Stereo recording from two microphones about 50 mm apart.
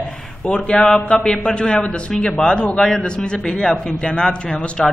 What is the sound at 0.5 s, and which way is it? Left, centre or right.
A man's voice, centre.